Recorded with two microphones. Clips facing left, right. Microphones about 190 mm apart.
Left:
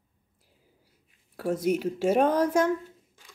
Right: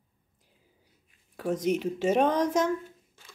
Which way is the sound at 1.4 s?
10° left (ahead or behind).